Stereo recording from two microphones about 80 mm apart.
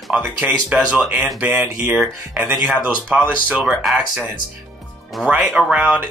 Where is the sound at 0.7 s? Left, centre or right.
Centre.